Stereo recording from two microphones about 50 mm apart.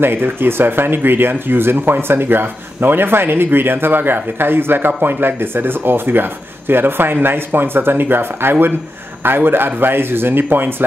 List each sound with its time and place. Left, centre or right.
0.0 s speech: right